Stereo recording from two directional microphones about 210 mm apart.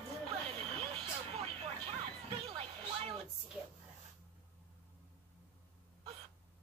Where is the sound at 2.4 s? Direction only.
25° right (ahead or behind).